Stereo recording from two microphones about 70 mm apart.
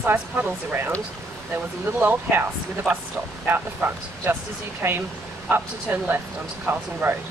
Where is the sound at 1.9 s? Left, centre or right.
Right.